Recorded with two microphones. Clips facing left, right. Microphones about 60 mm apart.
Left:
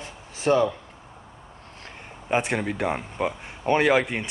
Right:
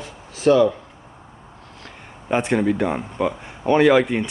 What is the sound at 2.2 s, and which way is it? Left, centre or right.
Speech, centre.